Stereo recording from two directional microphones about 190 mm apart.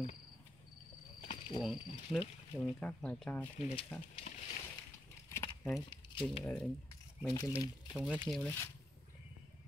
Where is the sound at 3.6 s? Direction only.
30° left (ahead or behind).